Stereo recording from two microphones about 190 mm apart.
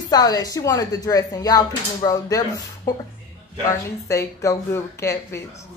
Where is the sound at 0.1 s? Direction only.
20° left (ahead or behind).